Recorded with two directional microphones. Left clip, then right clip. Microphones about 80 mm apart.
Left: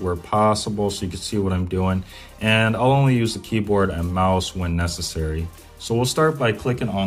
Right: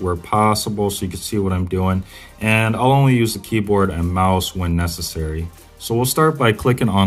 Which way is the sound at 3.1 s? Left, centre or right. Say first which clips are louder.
Right 4 dB; right.